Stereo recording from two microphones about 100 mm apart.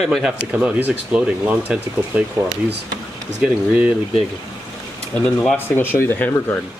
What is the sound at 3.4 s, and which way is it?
Speech, 15° right (ahead or behind).